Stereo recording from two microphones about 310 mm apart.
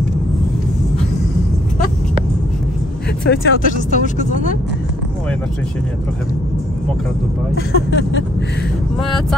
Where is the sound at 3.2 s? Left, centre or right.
Left.